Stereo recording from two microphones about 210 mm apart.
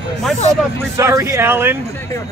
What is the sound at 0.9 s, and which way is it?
Speech, 15° right (ahead or behind).